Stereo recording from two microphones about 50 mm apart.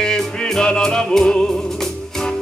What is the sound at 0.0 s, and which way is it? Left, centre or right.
Music, centre.